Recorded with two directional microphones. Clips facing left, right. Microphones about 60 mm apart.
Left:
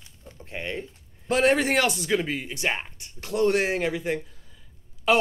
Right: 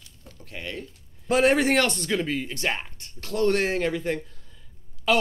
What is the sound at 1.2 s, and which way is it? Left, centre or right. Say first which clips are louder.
Speech: right 1 dB; centre.